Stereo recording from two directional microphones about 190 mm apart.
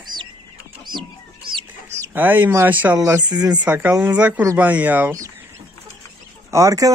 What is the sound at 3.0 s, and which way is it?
Speech, 20° right (ahead or behind).